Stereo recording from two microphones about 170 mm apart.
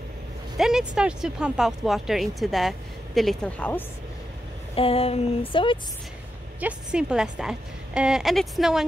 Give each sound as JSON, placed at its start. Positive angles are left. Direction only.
{"t": 0.6, "sound": "a woman's voice", "side_deg": -5}
{"t": 4.7, "sound": "a sound", "side_deg": 35}
{"t": 6.6, "sound": "a woman's voice", "side_deg": -5}